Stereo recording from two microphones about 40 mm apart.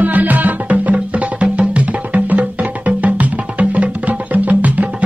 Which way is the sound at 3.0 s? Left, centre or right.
Right.